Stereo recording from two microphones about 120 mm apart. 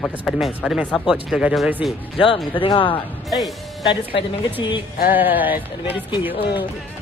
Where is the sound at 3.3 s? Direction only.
Centre (ahead or behind).